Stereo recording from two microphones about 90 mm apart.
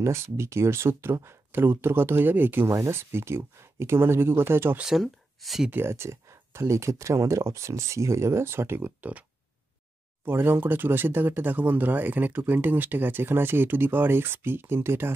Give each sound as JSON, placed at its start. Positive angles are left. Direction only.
{"t": 0.0, "sound": "speech", "side_deg": -30}
{"t": 4.7, "sound": "speech", "side_deg": -5}
{"t": 5.7, "sound": "speech", "side_deg": -25}
{"t": 10.2, "sound": "speech", "side_deg": -25}